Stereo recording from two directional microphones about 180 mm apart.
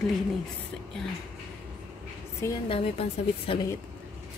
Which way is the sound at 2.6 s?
35° left (ahead or behind).